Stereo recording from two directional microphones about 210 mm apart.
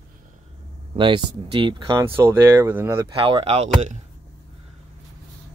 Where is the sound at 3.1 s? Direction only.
25° right (ahead or behind).